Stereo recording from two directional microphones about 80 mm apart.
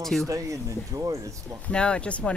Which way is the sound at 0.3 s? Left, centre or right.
Right.